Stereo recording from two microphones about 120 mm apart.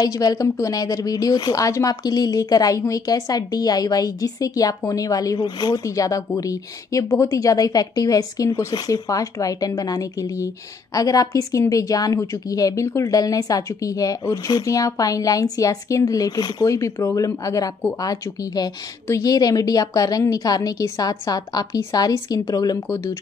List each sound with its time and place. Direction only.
0.0 s a woman's voice: 30° left (ahead or behind)
22.8 s a woman's voice: 20° left (ahead or behind)